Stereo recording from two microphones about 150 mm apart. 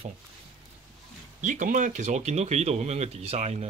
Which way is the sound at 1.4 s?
55° right (ahead or behind).